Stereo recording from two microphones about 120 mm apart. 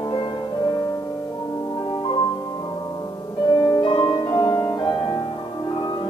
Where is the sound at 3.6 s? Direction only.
35° left (ahead or behind).